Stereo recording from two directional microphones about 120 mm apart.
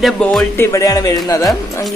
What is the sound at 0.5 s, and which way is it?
Speech, 25° left (ahead or behind).